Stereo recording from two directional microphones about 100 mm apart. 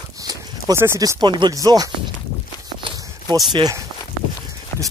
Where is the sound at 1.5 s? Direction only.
35° right (ahead or behind).